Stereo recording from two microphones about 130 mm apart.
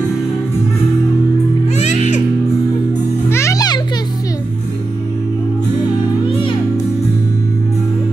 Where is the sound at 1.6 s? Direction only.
60° left (ahead or behind).